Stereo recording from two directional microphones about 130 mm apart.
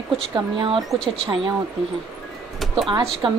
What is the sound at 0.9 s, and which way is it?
Speech, 5° left (ahead or behind).